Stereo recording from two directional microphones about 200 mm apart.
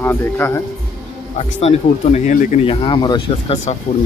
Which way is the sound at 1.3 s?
35° left (ahead or behind).